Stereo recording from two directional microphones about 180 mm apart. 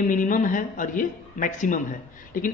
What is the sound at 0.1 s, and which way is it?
A man's voice, 45° left (ahead or behind).